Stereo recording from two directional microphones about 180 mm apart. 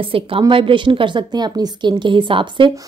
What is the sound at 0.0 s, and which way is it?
Speech, 30° right (ahead or behind).